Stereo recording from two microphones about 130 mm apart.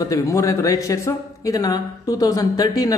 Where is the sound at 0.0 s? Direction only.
25° left (ahead or behind).